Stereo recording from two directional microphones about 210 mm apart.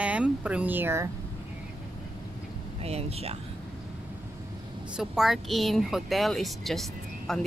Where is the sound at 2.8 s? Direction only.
30° right (ahead or behind).